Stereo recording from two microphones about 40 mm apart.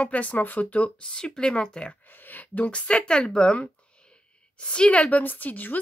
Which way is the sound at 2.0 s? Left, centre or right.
Left.